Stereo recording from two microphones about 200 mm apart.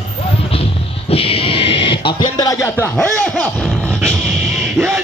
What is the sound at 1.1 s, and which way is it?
Music, 30° left (ahead or behind).